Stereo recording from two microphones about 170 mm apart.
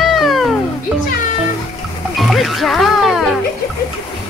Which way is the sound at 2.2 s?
Centre (ahead or behind).